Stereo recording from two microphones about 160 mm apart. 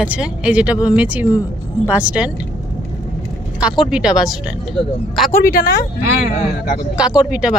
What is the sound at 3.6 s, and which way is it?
Speech, 5° right (ahead or behind).